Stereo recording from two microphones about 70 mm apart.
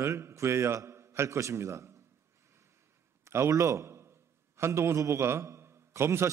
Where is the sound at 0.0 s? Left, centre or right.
Right.